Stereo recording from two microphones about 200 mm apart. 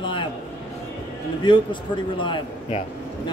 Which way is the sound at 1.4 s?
25° left (ahead or behind).